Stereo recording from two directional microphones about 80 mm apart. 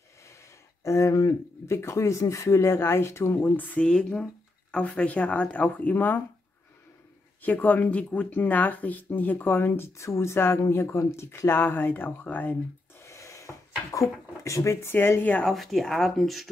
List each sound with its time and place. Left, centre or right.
0.8 s speech: left
3.5 s speech: centre
7.4 s speech: left
13.0 s a sound: left
14.4 s speech: left
15.4 s speech: centre